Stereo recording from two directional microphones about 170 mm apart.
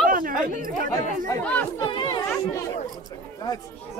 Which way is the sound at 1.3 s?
10° left (ahead or behind).